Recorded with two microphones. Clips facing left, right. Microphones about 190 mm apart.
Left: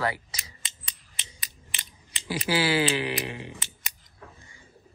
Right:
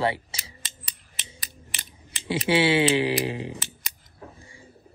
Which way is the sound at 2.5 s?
25° right (ahead or behind).